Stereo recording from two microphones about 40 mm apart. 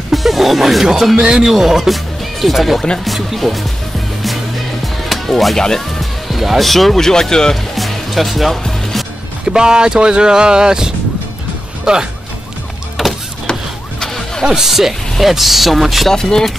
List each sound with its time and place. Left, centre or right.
0.1 s music: centre
0.8 s speech: centre
4.8 s music: centre
6.7 s speech: centre
7.7 s music: centre
9.5 s speech: centre
13.0 s a sound: centre
13.5 s vehicle: centre
14.4 s speech: centre
14.7 s speech: centre
16.1 s speech: centre